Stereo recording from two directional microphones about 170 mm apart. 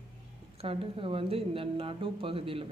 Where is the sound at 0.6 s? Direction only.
35° right (ahead or behind).